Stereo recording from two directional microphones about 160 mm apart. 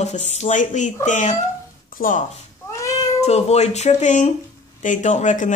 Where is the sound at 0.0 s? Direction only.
45° left (ahead or behind).